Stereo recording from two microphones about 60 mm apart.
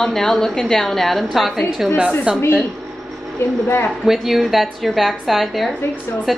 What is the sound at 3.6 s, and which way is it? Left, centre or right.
Speech, left.